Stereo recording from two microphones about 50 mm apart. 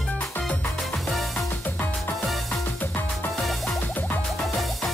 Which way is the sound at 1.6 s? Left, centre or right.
Left.